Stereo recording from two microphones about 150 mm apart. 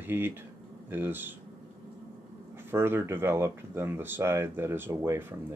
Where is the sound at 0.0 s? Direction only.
15° right (ahead or behind).